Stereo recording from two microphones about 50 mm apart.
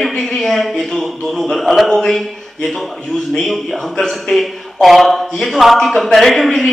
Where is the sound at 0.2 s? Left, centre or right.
Centre.